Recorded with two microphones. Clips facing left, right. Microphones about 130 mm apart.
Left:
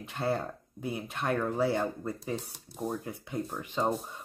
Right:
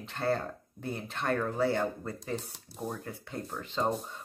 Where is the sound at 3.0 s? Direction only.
15° left (ahead or behind).